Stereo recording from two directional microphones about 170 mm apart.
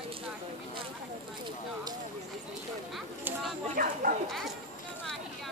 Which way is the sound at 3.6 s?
55° right (ahead or behind).